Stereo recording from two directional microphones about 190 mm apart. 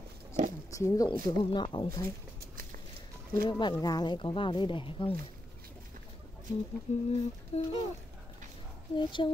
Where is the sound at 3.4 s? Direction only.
25° left (ahead or behind).